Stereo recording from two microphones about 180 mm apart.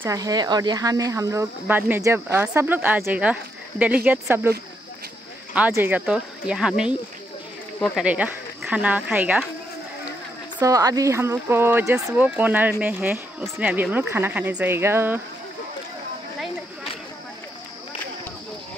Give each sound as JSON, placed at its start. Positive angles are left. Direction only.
{"t": 0.0, "sound": "speech", "side_deg": -20}
{"t": 10.6, "sound": "speech", "side_deg": -20}